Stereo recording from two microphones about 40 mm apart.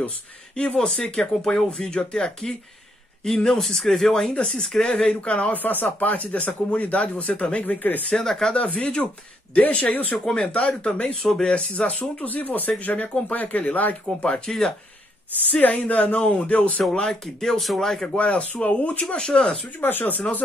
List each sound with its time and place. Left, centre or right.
0.7 s speech: centre
3.3 s speech: centre
5.2 s speech: left
8.1 s speech: centre
8.5 s speech: left
10.1 s speech: centre
10.4 s speech: left
14.2 s speech: centre
15.5 s speech: left
17.1 s speech: centre
18.1 s speech: left
19.1 s speech: centre
19.8 s speech: left